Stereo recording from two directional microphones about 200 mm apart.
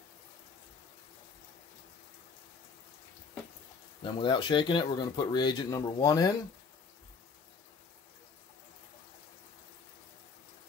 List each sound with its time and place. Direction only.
4.0 s speech: 25° left (ahead or behind)